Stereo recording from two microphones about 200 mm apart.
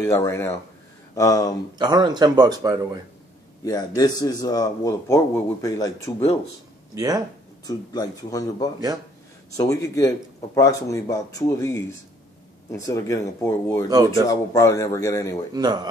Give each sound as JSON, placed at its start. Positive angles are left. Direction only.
{"t": 0.0, "sound": "a man's voice", "side_deg": 15}
{"t": 1.8, "sound": "speech", "side_deg": -20}
{"t": 3.6, "sound": "a man's voice", "side_deg": 20}
{"t": 7.6, "sound": "a man's voice", "side_deg": 20}
{"t": 13.8, "sound": "speech", "side_deg": -20}
{"t": 14.2, "sound": "a man's voice", "side_deg": 15}
{"t": 15.5, "sound": "speech", "side_deg": -20}